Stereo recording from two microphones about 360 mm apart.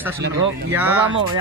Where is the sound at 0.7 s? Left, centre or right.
Centre.